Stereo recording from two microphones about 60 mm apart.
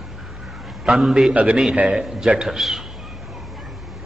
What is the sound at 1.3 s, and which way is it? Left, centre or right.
Speech, right.